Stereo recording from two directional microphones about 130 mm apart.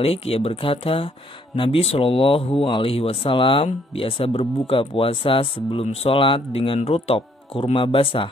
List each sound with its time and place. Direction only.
0.0 s speech: 50° left (ahead or behind)